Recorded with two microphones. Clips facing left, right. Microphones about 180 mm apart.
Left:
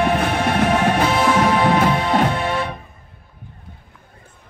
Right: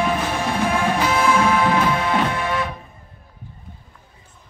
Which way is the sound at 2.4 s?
30° left (ahead or behind).